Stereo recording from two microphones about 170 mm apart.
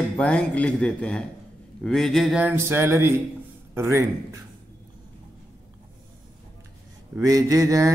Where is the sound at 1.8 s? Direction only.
Centre (ahead or behind); by 3.1 s 15° right (ahead or behind).